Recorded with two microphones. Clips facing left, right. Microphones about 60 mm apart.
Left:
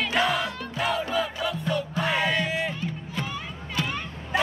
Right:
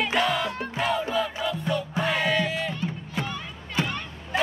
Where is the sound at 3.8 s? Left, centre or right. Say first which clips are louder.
Right 2 dB; right.